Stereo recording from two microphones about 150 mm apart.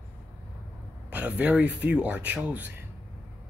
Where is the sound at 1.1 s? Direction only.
10° right (ahead or behind).